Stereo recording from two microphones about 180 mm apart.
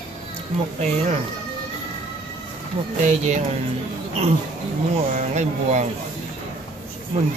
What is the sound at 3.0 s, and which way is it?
Speech, 40° right (ahead or behind).